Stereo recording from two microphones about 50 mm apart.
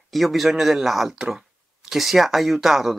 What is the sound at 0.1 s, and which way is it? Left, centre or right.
Speech, centre.